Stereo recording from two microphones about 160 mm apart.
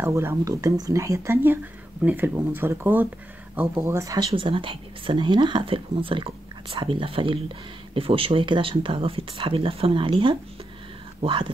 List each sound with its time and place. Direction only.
0.0 s speech: 15° right (ahead or behind)
4.4 s speech: 35° right (ahead or behind)